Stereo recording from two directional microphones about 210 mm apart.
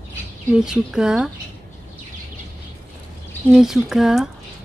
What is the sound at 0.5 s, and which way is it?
Speech, 5° right (ahead or behind).